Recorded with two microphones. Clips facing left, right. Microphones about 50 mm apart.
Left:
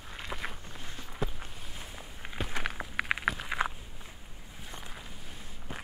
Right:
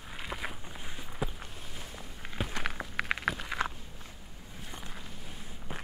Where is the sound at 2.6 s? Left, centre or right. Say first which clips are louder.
Even; centre.